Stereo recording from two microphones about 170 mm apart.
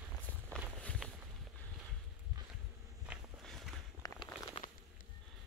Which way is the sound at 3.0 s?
Centre (ahead or behind).